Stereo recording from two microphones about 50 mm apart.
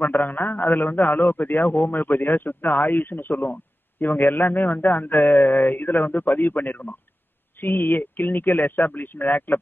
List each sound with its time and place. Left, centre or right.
0.0 s a man's voice: left